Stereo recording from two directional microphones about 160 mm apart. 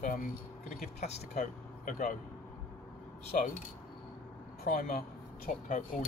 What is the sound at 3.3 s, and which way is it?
Speech, 55° left (ahead or behind).